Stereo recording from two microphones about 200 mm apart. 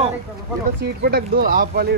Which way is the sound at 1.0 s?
50° right (ahead or behind).